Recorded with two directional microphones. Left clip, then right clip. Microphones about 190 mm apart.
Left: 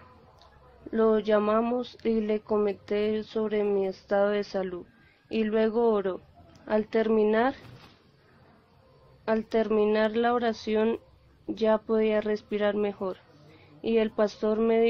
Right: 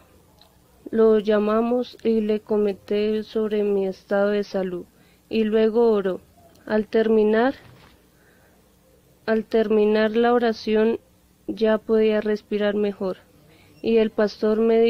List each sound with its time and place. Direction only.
0.8 s speech: 50° right (ahead or behind)
7.6 s a sound: centre (ahead or behind)
9.2 s speech: 55° right (ahead or behind)